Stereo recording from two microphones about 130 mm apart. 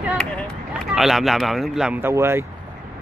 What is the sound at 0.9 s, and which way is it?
Speech, centre (ahead or behind).